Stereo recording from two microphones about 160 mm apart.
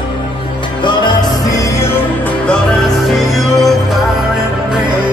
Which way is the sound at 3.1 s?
Centre (ahead or behind).